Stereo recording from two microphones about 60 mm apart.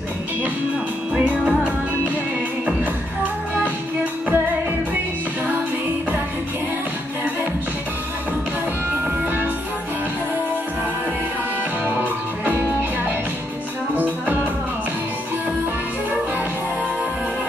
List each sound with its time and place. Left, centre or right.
3.6 s music: right
11.8 s music: right
13.9 s music: right